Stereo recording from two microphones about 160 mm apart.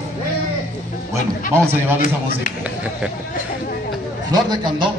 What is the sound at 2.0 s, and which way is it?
Speech, 55° left (ahead or behind).